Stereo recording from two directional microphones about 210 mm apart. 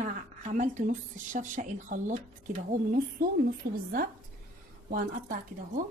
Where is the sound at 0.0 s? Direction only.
35° right (ahead or behind).